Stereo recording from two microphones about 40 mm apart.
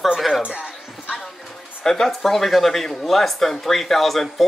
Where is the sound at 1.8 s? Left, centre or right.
Centre.